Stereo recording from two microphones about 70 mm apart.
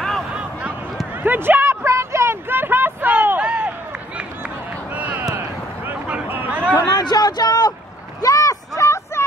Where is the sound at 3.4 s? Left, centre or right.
Centre.